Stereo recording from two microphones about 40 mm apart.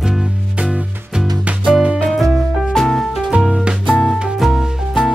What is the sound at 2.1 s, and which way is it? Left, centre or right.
Music, centre.